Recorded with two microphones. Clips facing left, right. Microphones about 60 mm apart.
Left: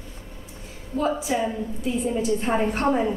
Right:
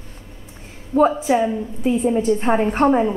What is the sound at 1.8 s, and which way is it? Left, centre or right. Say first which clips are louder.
Speech: right 7 dB; right.